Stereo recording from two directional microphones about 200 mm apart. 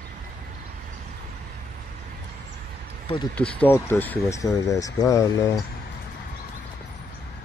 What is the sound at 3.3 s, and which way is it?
Speech, 5° left (ahead or behind).